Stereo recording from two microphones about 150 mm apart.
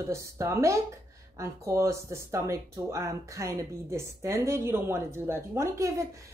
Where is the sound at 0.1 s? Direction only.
20° right (ahead or behind).